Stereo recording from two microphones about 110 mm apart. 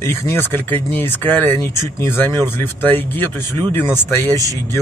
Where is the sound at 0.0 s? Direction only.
20° left (ahead or behind).